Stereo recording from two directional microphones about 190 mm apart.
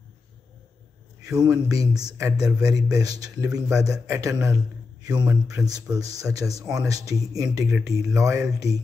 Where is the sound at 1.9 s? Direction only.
20° right (ahead or behind).